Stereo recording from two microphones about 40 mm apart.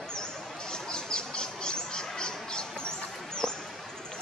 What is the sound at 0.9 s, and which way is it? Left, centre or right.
Bird, centre.